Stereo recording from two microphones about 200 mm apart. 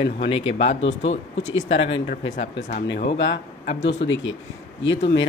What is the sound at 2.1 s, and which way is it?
Speech, 50° left (ahead or behind).